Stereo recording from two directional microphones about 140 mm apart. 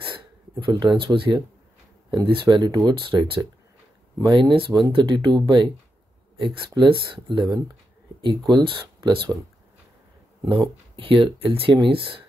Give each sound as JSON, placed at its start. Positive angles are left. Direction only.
{"t": 0.7, "sound": "speech", "side_deg": -35}
{"t": 10.4, "sound": "speech", "side_deg": -35}